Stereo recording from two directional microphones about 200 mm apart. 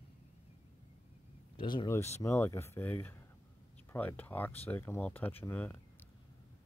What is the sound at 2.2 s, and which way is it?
Speech, 10° left (ahead or behind).